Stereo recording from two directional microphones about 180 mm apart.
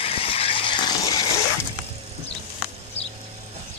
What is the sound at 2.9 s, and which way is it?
Music, 35° left (ahead or behind).